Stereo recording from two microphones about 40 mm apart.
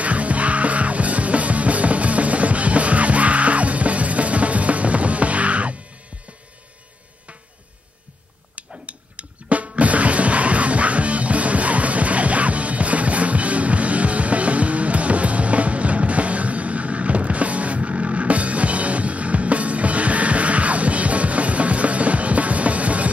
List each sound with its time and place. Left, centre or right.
0.0 s music: right
8.5 s music: right